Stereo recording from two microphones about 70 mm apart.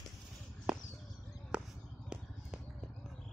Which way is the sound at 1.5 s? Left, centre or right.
Centre.